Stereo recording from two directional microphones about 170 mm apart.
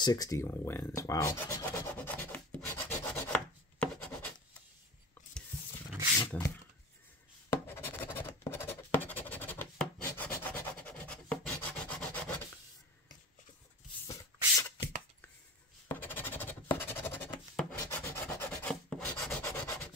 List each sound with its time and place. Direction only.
0.0 s rub: 20° left (ahead or behind)
3.8 s writing: 5° left (ahead or behind)
6.1 s a sound: 15° left (ahead or behind)
7.4 s scratch: 15° left (ahead or behind)
14.0 s a sound: 20° left (ahead or behind)
15.9 s scratch: 10° left (ahead or behind)
17.8 s rub: 15° left (ahead or behind)